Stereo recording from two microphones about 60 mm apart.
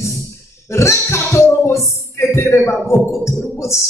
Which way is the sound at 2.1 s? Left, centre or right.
Left.